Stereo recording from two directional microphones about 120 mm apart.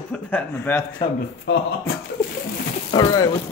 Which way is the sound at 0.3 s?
15° left (ahead or behind).